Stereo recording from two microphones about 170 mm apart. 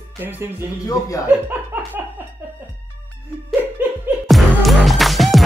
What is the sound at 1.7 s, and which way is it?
Laughter, 10° right (ahead or behind).